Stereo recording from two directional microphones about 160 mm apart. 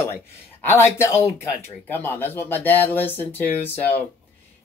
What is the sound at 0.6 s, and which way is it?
Speech, 15° left (ahead or behind).